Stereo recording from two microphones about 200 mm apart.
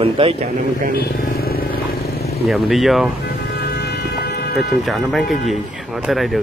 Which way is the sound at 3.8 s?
55° left (ahead or behind).